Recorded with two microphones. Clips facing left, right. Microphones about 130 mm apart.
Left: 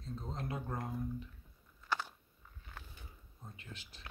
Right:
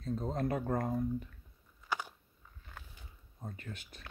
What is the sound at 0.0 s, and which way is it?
Speech, 55° right (ahead or behind).